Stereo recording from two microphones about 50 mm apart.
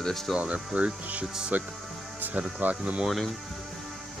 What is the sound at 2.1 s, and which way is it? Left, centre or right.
Music, right.